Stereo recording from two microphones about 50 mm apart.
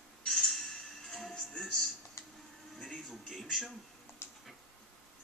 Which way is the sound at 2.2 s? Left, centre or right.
Left.